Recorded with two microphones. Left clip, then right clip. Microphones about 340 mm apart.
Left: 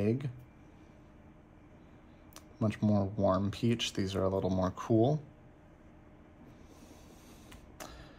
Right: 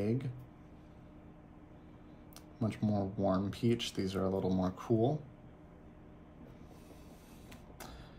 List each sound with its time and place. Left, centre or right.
0.0 s speech: left
2.6 s speech: left